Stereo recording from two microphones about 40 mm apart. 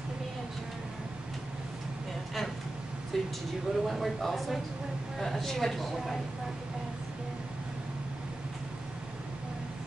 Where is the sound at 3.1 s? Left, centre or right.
Centre.